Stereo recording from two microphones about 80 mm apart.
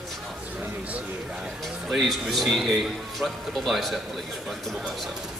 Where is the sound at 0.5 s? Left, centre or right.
Centre.